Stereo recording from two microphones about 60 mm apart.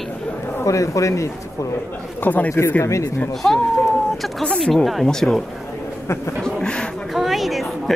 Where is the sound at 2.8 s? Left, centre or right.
Left.